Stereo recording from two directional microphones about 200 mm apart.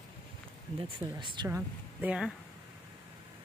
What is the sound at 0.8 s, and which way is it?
Speech, 25° right (ahead or behind).